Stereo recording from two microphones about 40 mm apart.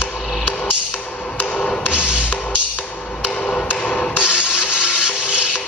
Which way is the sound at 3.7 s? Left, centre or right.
Left.